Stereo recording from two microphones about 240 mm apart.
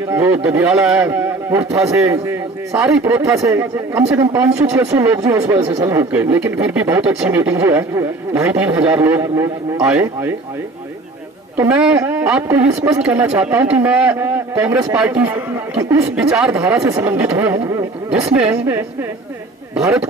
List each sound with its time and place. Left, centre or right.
0.1 s a man's voice: centre
11.5 s a woman's voice: centre